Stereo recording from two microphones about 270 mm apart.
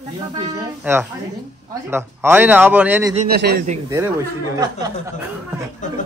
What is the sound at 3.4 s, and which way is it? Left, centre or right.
Speech, right.